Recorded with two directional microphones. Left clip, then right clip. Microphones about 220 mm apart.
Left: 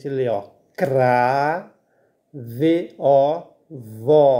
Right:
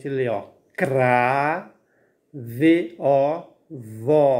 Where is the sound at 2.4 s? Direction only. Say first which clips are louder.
Right 1 dB; 5° left (ahead or behind).